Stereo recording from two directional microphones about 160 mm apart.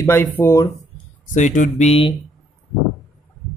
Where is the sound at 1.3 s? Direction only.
50° left (ahead or behind).